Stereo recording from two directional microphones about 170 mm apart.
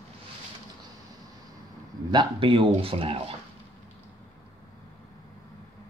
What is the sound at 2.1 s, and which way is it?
Speech, 30° right (ahead or behind).